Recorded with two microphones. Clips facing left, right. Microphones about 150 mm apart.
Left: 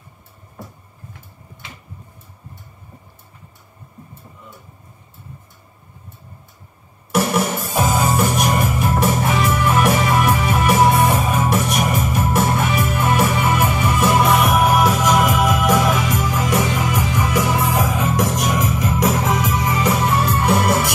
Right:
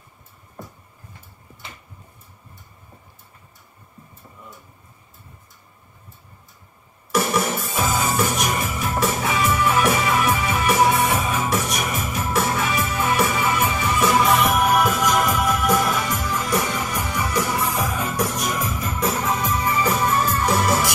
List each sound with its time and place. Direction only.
7.1 s music: 60° left (ahead or behind)